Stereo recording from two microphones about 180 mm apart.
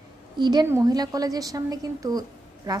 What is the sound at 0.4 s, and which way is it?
A woman's voice, 25° right (ahead or behind).